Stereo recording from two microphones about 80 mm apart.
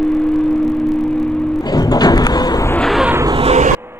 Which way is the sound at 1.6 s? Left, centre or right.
Left.